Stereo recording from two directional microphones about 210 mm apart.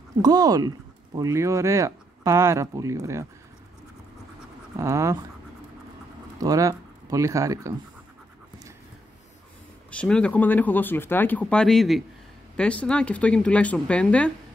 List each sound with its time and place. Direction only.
0.2 s speech: 20° right (ahead or behind)
4.7 s speech: 15° right (ahead or behind)
6.3 s speech: 15° right (ahead or behind)
9.8 s speech: 5° left (ahead or behind)